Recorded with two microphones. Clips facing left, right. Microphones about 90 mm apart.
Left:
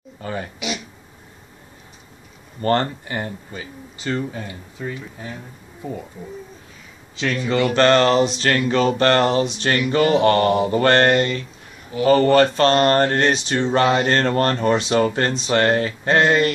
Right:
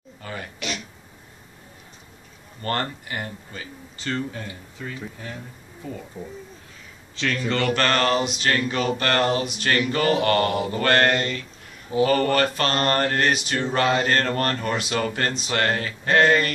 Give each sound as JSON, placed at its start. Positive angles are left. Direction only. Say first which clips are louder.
{"t": 0.2, "sound": "speech", "louder": "left 6 dB", "side_deg": 30}
{"t": 0.6, "sound": "a sound", "louder": "left 4 dB", "side_deg": 10}
{"t": 2.6, "sound": "mantra", "louder": "left 7 dB", "side_deg": 30}
{"t": 3.5, "sound": "speech", "louder": "left 4 dB", "side_deg": 15}
{"t": 4.5, "sound": "mantra", "louder": "left 5 dB", "side_deg": 20}
{"t": 5.8, "sound": "speech", "louder": "left 5 dB", "side_deg": 15}
{"t": 7.2, "sound": "speech", "louder": "left 4 dB", "side_deg": 10}
{"t": 7.7, "sound": "mantra", "louder": "left 8 dB", "side_deg": 25}
{"t": 8.6, "sound": "speech", "louder": "left 7 dB", "side_deg": 35}
{"t": 9.8, "sound": "mantra", "louder": "left 7 dB", "side_deg": 25}